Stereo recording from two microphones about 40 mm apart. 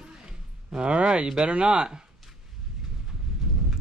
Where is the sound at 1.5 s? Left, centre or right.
Right.